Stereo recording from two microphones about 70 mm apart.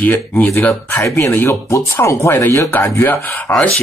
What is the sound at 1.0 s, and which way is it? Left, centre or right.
Speech, left.